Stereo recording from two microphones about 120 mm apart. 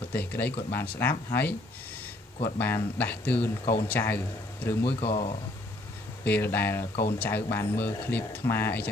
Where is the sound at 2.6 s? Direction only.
15° left (ahead or behind).